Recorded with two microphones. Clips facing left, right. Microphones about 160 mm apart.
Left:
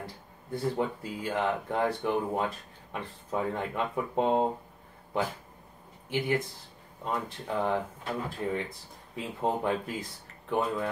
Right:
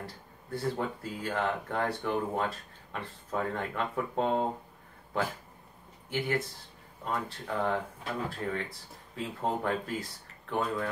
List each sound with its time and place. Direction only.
0.0 s speech: 15° left (ahead or behind)
6.0 s speech: 20° left (ahead or behind)